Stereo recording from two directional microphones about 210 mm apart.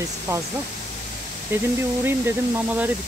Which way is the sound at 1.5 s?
10° right (ahead or behind).